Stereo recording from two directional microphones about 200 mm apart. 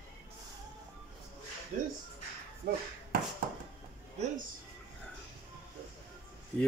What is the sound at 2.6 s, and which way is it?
Speech, 55° right (ahead or behind).